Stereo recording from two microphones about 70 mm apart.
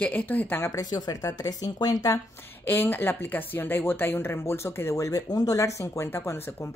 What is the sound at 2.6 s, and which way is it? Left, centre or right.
Speech, left.